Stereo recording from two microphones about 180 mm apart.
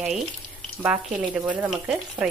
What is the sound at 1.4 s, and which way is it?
Speech, 5° right (ahead or behind).